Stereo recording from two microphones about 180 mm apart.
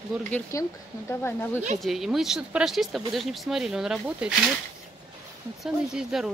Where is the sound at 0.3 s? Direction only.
15° left (ahead or behind).